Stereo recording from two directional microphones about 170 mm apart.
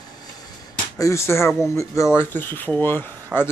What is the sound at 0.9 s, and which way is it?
Speech, 20° left (ahead or behind).